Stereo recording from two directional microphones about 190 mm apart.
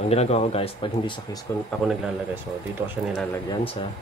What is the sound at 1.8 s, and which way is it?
Speech, 5° right (ahead or behind).